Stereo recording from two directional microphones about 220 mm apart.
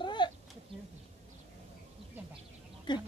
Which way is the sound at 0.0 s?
20° left (ahead or behind).